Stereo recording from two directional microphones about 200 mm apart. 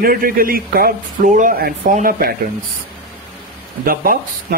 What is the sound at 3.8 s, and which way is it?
Speech, 45° right (ahead or behind).